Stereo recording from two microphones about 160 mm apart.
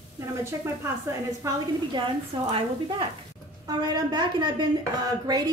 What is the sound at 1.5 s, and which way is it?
A woman's voice, 30° right (ahead or behind).